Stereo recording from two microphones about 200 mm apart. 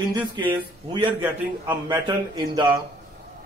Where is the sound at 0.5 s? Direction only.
25° right (ahead or behind).